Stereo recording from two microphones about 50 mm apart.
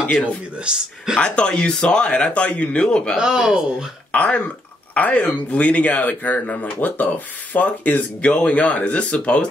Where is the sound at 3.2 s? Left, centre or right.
Centre.